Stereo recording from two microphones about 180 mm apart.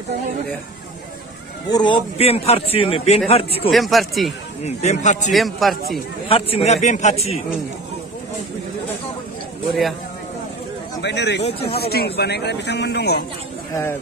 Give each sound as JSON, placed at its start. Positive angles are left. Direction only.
{"t": 1.7, "sound": "a man's voice", "side_deg": 25}
{"t": 3.7, "sound": "speech", "side_deg": 0}
{"t": 4.6, "sound": "a man's voice", "side_deg": 40}
{"t": 5.3, "sound": "speech", "side_deg": 0}
{"t": 6.2, "sound": "a man's voice", "side_deg": 30}
{"t": 11.0, "sound": "speech", "side_deg": 70}